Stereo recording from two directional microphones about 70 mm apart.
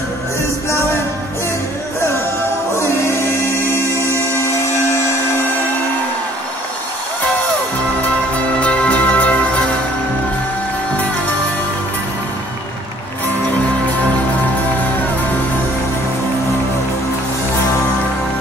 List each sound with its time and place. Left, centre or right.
2.7 s music: left
8.5 s music: centre